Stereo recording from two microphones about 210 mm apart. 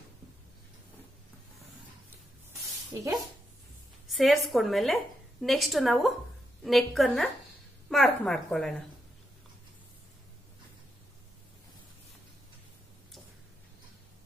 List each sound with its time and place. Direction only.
2.9 s speech: 15° right (ahead or behind)
4.1 s a sound: centre (ahead or behind)
4.5 s a woman's voice: centre (ahead or behind)